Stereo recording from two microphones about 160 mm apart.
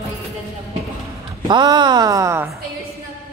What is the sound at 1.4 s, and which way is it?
Speech, 25° right (ahead or behind).